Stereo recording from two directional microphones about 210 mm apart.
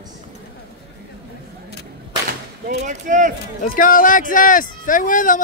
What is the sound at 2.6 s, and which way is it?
Speech, 35° right (ahead or behind).